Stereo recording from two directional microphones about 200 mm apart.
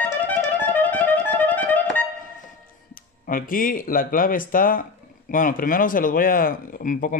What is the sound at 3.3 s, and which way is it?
Speech, 45° left (ahead or behind).